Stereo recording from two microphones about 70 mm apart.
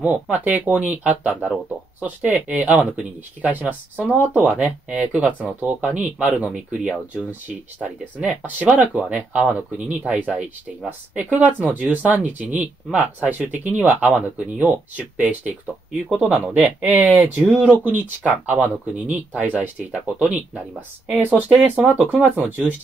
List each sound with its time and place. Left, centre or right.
0.0 s speech: right
8.5 s speech: right
15.6 s speech: centre; by 21.9 s right